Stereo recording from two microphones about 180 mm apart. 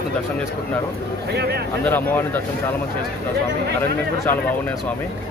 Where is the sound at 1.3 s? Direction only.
60° right (ahead or behind).